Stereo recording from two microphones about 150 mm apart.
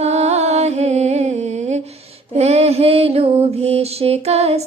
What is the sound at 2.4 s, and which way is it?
Mantra, 45° right (ahead or behind).